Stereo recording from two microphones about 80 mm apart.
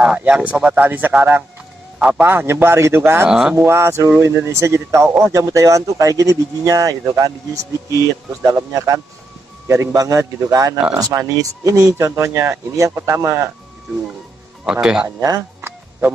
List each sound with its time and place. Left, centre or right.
0.0 s a man's voice: centre
2.2 s speech: right
3.3 s speech: centre
3.5 s speech: right
14.6 s speech: centre
15.0 s speech: right